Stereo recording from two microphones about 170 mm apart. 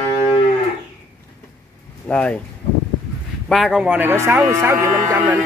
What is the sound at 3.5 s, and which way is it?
Speech, centre (ahead or behind).